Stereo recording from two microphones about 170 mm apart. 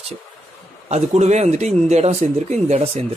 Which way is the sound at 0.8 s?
40° right (ahead or behind).